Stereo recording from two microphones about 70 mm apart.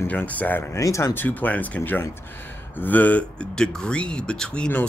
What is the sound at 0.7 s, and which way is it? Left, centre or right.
Speech, left.